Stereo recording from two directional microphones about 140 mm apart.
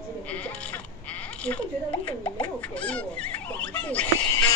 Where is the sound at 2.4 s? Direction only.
10° left (ahead or behind).